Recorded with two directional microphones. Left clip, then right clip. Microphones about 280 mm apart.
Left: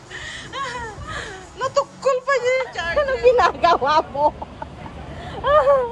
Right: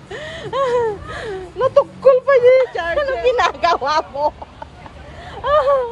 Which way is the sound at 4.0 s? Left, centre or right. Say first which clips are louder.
Even; right.